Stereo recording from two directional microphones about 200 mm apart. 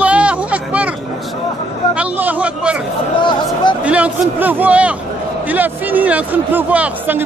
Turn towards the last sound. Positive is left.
turn(degrees=-10)  # may be behind; listen again after turning